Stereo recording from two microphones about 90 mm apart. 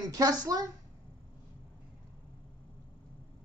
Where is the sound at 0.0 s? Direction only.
45° right (ahead or behind).